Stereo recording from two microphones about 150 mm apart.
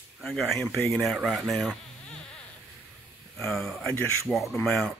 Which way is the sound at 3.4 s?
5° left (ahead or behind).